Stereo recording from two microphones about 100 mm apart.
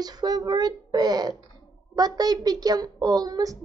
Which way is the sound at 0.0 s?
40° right (ahead or behind).